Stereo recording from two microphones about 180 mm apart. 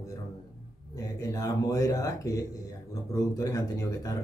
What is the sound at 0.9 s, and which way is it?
Speech, 20° left (ahead or behind).